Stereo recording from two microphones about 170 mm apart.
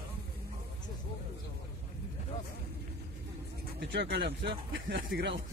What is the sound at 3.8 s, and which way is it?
Speech, 90° right.